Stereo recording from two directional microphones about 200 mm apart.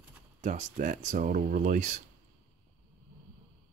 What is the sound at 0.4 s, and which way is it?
Speech, 35° right (ahead or behind).